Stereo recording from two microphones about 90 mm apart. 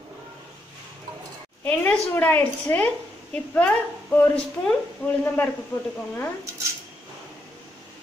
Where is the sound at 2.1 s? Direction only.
20° left (ahead or behind).